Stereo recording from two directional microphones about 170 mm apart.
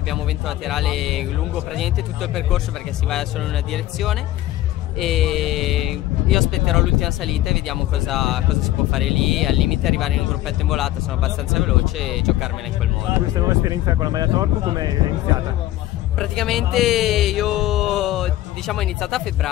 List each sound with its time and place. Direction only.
0.7 s speech: centre (ahead or behind)
3.7 s speech: centre (ahead or behind)
13.3 s speech: 20° right (ahead or behind)
16.2 s speech: centre (ahead or behind)